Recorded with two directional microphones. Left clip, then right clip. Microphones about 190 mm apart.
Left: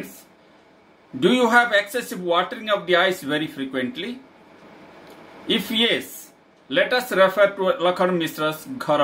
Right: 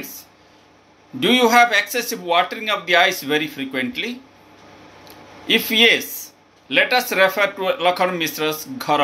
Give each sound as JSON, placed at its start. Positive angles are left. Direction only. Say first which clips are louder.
{"t": 1.2, "sound": "speech", "louder": "right 3 dB", "side_deg": 15}
{"t": 5.5, "sound": "speech", "louder": "right 6 dB", "side_deg": 15}